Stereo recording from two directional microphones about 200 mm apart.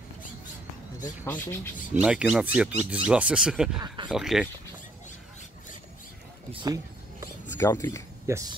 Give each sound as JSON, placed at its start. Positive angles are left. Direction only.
{"t": 1.0, "sound": "speech", "side_deg": 10}
{"t": 2.0, "sound": "speech", "side_deg": -5}
{"t": 3.8, "sound": "speech", "side_deg": -25}
{"t": 4.1, "sound": "speech", "side_deg": 0}
{"t": 6.5, "sound": "a sound", "side_deg": -20}
{"t": 7.4, "sound": "speech", "side_deg": 15}
{"t": 8.3, "sound": "speech", "side_deg": -15}